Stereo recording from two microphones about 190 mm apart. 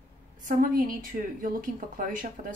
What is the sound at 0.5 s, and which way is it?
Speech, 45° right (ahead or behind).